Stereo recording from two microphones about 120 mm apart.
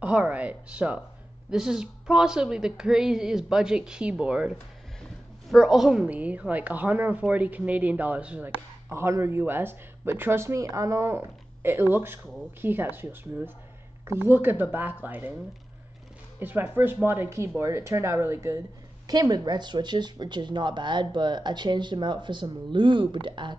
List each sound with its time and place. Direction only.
0.0 s a woman's voice: 10° right (ahead or behind)
16.3 s a woman's voice: 15° right (ahead or behind)
19.0 s speech: 35° right (ahead or behind)